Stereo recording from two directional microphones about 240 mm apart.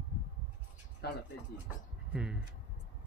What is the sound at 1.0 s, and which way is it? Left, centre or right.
Speech, left.